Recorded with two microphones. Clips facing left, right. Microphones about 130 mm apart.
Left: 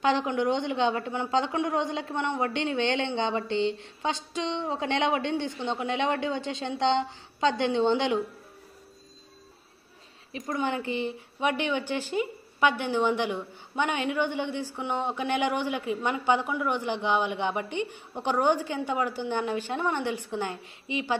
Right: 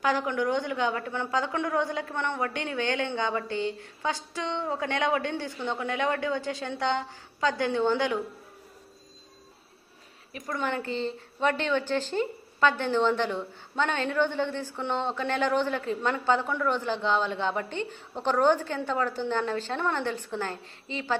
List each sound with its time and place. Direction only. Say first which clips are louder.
0.0 s a woman's voice: left 2 dB; 25° left (ahead or behind)
10.4 s a woman's voice: left 1 dB; 15° left (ahead or behind)